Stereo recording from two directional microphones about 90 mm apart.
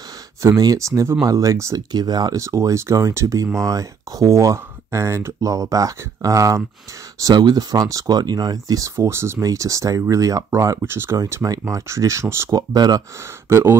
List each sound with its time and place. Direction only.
0.4 s speech: 40° right (ahead or behind)
1.9 s speech: 50° right (ahead or behind)
2.3 s speech: 35° right (ahead or behind)
8.9 s speech: 30° right (ahead or behind)
12.5 s speech: 45° right (ahead or behind)
13.5 s speech: 25° right (ahead or behind)